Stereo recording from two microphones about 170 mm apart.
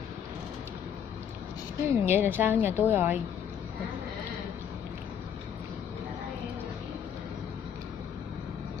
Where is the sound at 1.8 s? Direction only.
15° right (ahead or behind).